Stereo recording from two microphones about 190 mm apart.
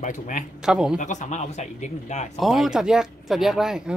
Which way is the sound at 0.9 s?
40° left (ahead or behind).